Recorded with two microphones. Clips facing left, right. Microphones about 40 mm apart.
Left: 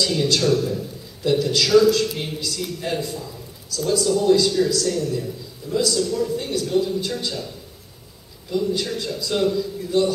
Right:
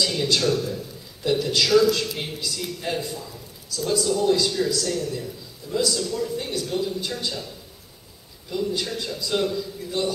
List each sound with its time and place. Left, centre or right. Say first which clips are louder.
0.0 s a man's voice: left 2 dB; centre
8.5 s a man's voice: left 3 dB; centre